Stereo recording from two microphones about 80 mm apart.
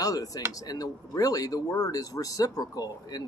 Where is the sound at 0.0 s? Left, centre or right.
Left.